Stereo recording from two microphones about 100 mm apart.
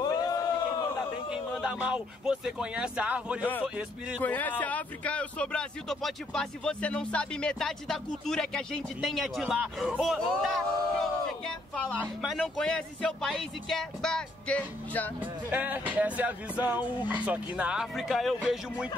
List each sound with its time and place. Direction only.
0.0 s a sound: 40° left (ahead or behind)
1.3 s speech: 10° right (ahead or behind)
4.2 s a man's voice: 15° left (ahead or behind)
15.5 s speech: 15° right (ahead or behind); by 18.3 s centre (ahead or behind)